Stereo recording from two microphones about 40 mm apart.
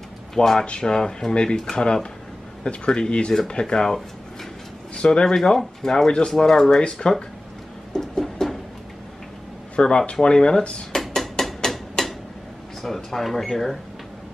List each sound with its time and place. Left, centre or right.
0.3 s speech: centre
5.3 s speech: centre
7.9 s a sound: centre
9.8 s speech: left
10.9 s hammer: centre
12.0 s a sound: centre
12.8 s speech: centre